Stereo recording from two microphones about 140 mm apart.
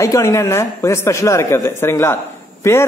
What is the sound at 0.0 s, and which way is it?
Speech, 20° left (ahead or behind).